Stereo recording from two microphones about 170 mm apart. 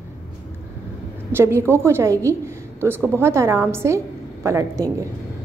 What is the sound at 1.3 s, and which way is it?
A woman's voice, 15° right (ahead or behind).